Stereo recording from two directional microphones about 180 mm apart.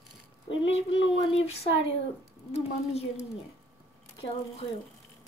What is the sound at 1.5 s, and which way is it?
Speech, 35° left (ahead or behind).